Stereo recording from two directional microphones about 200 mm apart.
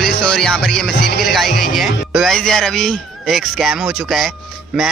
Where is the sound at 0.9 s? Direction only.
50° left (ahead or behind).